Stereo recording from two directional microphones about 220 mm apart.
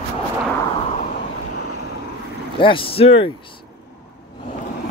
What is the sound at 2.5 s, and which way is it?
Speech, 25° left (ahead or behind).